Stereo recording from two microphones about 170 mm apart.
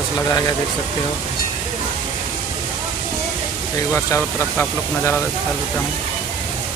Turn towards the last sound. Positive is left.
turn(degrees=15)  # may be behind; listen again after turning